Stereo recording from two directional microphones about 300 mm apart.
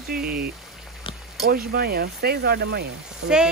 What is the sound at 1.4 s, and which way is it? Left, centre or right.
Speech, right.